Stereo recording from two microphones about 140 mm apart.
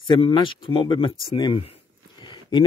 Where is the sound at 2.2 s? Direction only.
30° left (ahead or behind).